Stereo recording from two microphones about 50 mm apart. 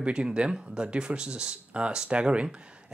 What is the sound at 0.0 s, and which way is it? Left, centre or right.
Speech, right.